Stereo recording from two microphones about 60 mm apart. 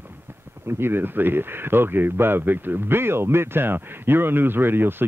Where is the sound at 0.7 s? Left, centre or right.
Right.